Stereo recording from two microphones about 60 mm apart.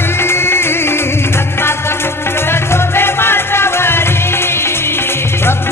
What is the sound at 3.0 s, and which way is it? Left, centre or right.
Music, left.